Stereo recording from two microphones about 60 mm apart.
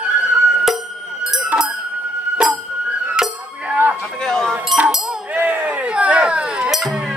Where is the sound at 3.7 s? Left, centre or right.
Right.